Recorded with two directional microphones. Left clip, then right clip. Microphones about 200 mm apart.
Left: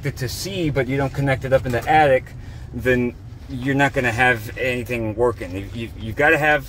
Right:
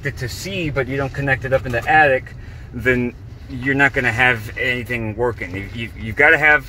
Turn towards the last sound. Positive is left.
turn(degrees=15)  # may be behind; listen again after turning